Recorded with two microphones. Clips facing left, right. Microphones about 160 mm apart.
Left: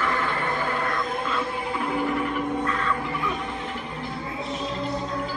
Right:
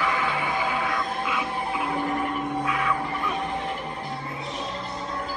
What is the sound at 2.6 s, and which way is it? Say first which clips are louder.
Crow: even; 10° right (ahead or behind).